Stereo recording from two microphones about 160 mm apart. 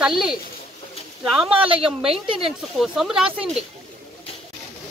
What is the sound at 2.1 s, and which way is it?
Speech, 35° right (ahead or behind).